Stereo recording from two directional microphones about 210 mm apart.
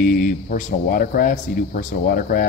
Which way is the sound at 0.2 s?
35° left (ahead or behind).